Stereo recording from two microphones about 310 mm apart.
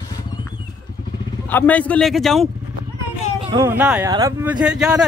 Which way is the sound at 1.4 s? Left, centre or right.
Centre.